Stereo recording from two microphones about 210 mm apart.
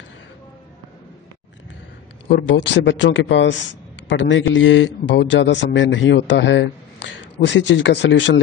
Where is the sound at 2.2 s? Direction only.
55° left (ahead or behind).